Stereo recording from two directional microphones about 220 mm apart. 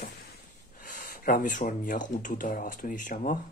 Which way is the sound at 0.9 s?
40° left (ahead or behind).